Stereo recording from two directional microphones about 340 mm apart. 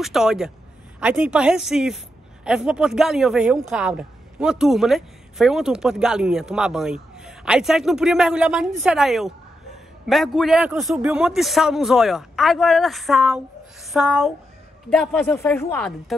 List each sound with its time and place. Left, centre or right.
0.0 s speech: centre